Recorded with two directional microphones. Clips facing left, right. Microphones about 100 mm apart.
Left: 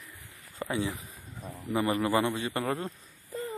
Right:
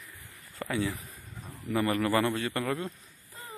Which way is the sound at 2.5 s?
30° left (ahead or behind).